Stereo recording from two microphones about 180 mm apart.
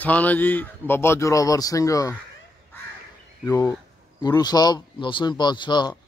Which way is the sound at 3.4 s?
15° left (ahead or behind).